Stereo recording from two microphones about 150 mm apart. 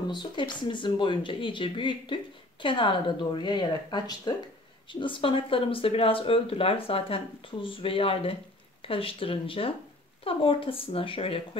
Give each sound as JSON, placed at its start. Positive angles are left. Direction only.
{"t": 0.1, "sound": "speech", "side_deg": 30}